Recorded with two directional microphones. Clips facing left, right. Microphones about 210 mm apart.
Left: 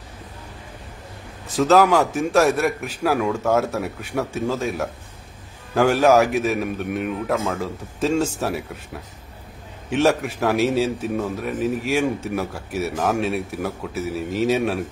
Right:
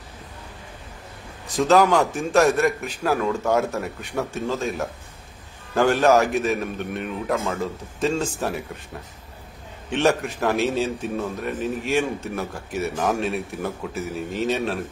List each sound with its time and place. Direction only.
1.6 s a man's voice: 5° left (ahead or behind)
9.8 s a man's voice: 5° left (ahead or behind)